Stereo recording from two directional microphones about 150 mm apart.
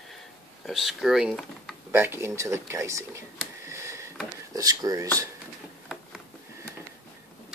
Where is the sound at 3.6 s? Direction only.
20° right (ahead or behind).